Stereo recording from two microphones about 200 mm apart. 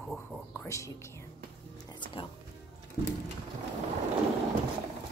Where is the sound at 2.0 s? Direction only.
25° left (ahead or behind).